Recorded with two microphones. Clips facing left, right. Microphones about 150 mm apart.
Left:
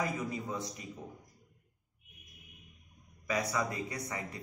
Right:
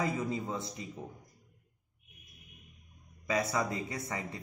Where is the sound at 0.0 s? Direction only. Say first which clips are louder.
Right 2 dB; 25° right (ahead or behind).